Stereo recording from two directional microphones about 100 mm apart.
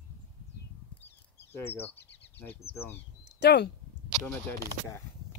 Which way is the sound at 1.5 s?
20° left (ahead or behind).